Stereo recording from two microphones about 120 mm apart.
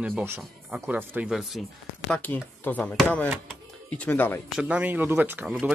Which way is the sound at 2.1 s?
10° left (ahead or behind).